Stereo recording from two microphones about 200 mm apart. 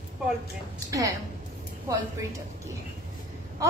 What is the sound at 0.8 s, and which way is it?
Speech, 15° right (ahead or behind).